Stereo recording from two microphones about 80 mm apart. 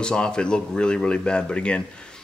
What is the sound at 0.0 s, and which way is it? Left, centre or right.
Speech, centre.